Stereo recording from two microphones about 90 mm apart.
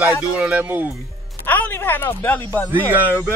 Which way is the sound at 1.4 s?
20° left (ahead or behind).